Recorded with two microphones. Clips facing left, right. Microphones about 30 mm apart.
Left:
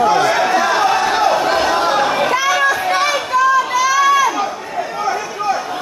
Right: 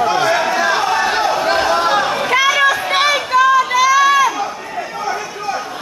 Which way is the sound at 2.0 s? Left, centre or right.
Centre.